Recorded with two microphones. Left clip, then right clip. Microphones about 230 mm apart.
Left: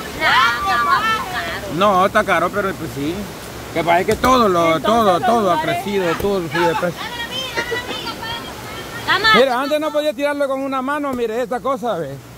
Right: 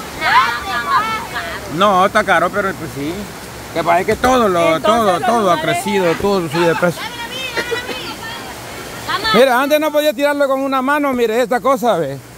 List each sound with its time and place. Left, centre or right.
0.2 s vehicle: centre
1.8 s speech: centre
3.7 s speech: centre
5.4 s a man's voice: centre
9.0 s a sound: left
9.4 s a man's voice: right